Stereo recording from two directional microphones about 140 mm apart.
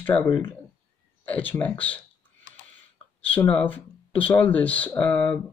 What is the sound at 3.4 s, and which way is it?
Speech, 15° left (ahead or behind).